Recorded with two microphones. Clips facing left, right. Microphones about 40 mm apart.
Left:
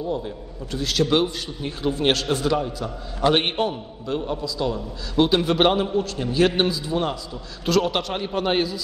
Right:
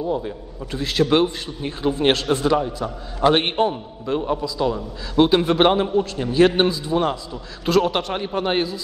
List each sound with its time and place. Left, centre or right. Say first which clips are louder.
0.0 s a man's voice: right 3 dB; centre
3.2 s a man's voice: right 3 dB; centre
6.3 s a man's voice: right 4 dB; right; by 8.6 s centre